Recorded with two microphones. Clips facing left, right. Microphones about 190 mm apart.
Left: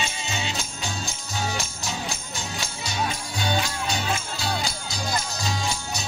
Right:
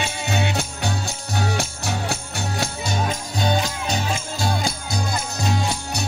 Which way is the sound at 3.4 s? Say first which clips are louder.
Right 4 dB; 40° right (ahead or behind).